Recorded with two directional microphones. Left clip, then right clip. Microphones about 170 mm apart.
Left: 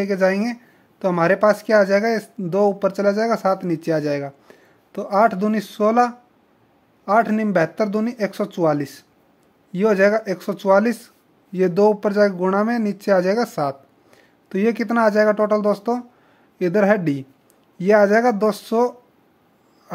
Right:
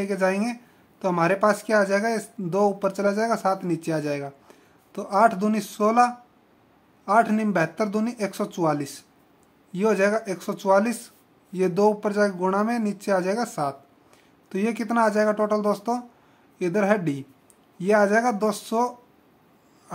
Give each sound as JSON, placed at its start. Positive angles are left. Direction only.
{"t": 0.0, "sound": "speech", "side_deg": 30}